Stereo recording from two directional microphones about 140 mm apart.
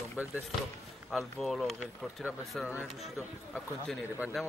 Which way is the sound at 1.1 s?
Centre (ahead or behind).